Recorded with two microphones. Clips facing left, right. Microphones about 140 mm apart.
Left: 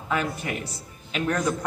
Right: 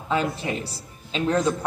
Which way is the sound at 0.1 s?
25° right (ahead or behind).